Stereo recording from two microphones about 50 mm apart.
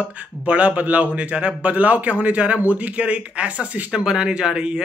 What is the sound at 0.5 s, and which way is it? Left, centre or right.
A man's voice, right.